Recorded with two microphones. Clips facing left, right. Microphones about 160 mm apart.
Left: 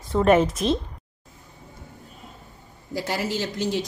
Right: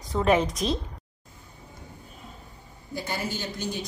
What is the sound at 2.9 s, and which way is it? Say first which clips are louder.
Speech: left 5 dB; 90° left.